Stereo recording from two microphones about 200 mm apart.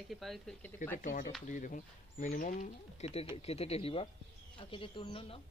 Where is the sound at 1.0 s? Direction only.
40° left (ahead or behind).